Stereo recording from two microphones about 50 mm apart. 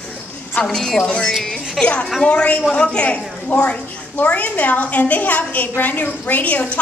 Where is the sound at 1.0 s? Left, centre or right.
Left.